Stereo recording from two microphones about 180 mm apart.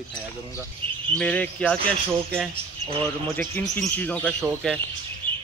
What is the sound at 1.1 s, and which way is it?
Speech, 10° left (ahead or behind).